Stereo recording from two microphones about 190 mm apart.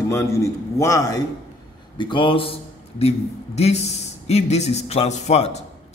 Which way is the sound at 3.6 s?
35° left (ahead or behind).